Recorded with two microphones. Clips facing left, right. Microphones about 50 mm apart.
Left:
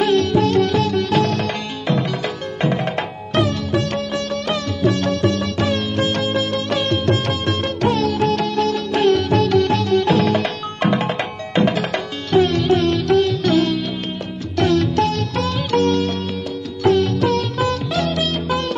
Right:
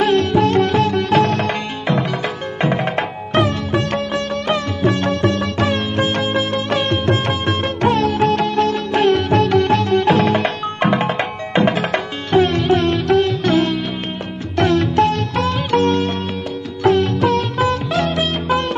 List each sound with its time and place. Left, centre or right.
0.0 s sitar: right
11.1 s music: centre
14.6 s sitar: right